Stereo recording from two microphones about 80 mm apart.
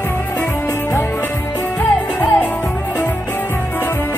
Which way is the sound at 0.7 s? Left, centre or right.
Left.